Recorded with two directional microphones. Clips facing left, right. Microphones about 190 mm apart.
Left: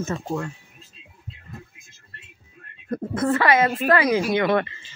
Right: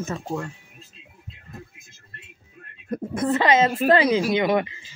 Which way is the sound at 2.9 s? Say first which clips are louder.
Left 1 dB; 10° right (ahead or behind).